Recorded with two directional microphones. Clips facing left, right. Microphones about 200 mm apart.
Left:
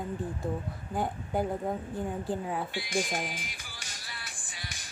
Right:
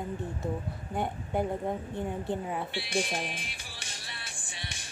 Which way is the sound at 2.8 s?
30° right (ahead or behind).